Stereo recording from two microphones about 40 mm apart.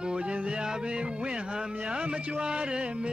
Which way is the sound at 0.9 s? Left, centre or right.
Right.